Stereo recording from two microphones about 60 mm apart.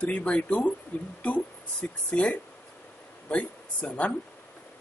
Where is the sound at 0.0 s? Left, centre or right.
Left.